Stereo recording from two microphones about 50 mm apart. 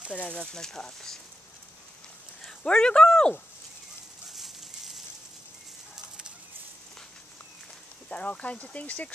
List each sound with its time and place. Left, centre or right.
0.1 s speech: left
0.5 s speech: centre
2.4 s speech: centre
4.3 s a sound: centre
8.1 s speech: left